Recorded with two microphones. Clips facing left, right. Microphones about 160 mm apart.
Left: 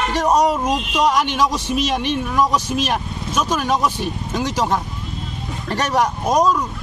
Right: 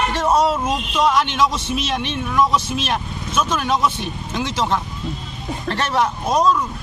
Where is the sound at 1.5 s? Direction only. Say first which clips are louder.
Left 3 dB; 40° left (ahead or behind).